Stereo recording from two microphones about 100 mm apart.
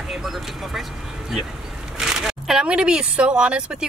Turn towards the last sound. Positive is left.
turn(degrees=-10)  # may be behind; listen again after turning